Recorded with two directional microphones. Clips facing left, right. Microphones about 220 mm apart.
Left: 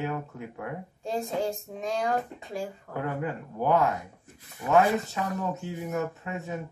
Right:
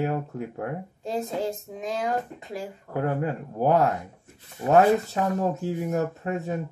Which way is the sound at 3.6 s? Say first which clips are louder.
Right 3 dB; 35° right (ahead or behind).